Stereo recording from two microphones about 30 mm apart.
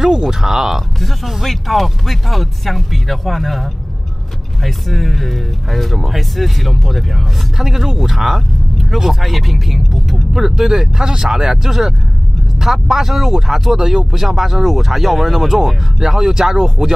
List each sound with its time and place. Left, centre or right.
0.0 s speech: centre
0.9 s speech: centre
7.5 s speech: centre
10.3 s speech: centre
11.5 s speech: centre